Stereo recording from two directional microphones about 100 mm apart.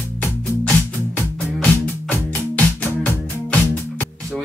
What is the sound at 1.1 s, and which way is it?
Music, 15° left (ahead or behind).